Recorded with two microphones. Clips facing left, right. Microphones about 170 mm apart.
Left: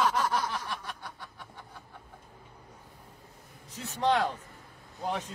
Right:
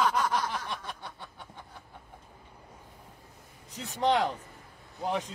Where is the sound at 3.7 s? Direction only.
15° right (ahead or behind).